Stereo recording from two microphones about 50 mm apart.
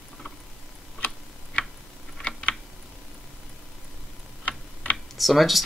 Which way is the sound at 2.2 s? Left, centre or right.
Left.